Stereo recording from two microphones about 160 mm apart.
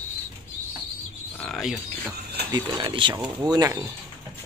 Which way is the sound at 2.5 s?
30° right (ahead or behind).